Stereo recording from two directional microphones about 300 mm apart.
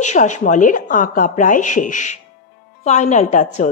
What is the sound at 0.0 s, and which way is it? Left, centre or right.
Speech, left.